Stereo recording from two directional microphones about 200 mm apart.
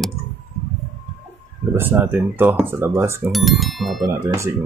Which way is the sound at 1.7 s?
10° right (ahead or behind).